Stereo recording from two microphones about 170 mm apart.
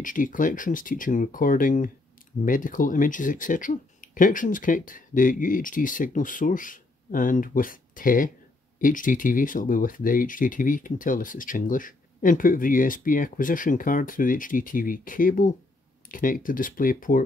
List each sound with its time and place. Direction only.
0.0 s speech: 50° left (ahead or behind)